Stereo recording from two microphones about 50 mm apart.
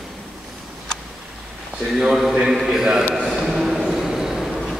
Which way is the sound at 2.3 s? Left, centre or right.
Centre.